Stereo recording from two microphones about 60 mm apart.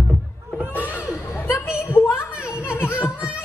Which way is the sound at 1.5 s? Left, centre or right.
Left.